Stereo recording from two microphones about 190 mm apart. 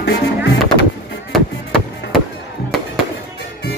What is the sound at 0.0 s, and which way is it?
Music, 60° left (ahead or behind).